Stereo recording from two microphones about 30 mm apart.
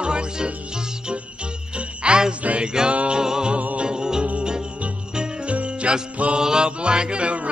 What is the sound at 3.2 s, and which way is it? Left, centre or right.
Music, right.